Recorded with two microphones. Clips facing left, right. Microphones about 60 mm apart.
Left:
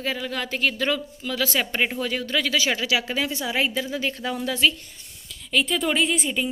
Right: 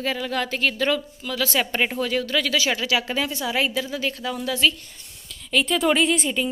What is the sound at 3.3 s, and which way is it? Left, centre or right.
A woman's voice, centre.